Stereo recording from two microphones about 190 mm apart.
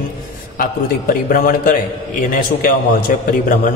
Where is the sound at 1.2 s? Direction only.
45° left (ahead or behind).